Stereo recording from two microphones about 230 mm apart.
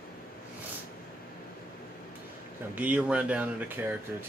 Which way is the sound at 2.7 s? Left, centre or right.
Centre.